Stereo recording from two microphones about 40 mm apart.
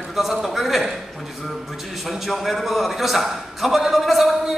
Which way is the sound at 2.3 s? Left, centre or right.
Centre.